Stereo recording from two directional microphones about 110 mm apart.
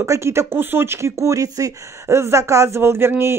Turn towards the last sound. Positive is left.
turn(degrees=-20)  # may be behind; listen again after turning